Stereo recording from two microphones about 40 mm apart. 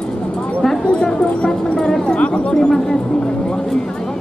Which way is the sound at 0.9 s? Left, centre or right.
Left.